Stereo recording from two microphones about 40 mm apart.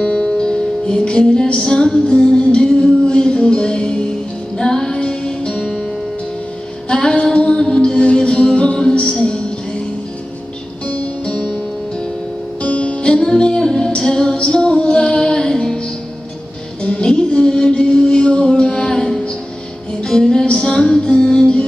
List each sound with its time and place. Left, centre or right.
0.0 s music: left
6.9 s music: left
11.2 s music: left
12.6 s music: left
16.8 s music: left